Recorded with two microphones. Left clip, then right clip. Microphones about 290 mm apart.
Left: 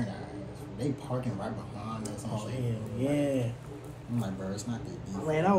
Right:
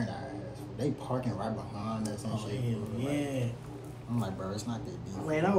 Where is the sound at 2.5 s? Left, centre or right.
Centre.